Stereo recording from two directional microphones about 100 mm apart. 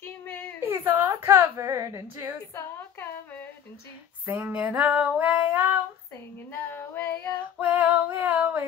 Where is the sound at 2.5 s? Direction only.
25° left (ahead or behind).